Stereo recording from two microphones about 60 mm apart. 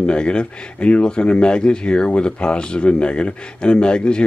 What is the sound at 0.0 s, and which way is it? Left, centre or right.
Speech, centre.